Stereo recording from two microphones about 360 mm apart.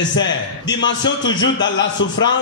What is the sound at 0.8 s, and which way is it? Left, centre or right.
A man's voice, left.